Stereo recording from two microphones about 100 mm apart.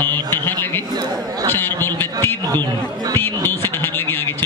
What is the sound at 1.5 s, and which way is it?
Speech, 20° left (ahead or behind).